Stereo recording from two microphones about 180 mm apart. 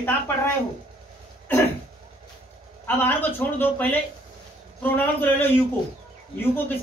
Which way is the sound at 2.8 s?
10° left (ahead or behind).